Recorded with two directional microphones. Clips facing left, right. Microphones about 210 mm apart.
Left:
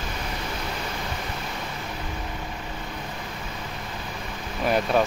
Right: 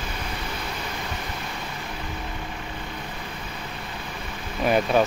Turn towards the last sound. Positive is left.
turn(degrees=-5)  # may be behind; listen again after turning